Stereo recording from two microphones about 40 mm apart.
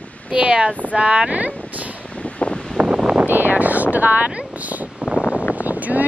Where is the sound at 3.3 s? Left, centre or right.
Right.